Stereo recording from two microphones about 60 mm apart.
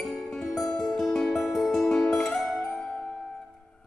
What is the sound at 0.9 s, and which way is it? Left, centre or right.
Music, centre.